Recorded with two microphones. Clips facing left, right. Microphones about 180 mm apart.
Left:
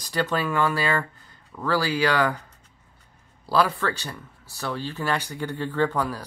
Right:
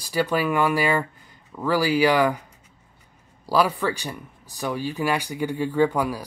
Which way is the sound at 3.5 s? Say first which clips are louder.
Right 1 dB; 15° right (ahead or behind).